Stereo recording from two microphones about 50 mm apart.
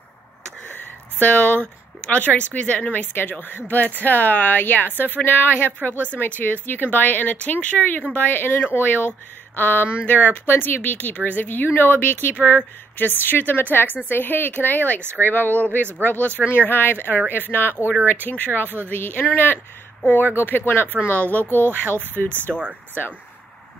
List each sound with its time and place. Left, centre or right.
0.7 s a woman's voice: left
15.0 s speech: right
15.2 s a woman's voice: left
16.4 s a woman's voice: left
21.6 s speech: right
22.5 s speech: centre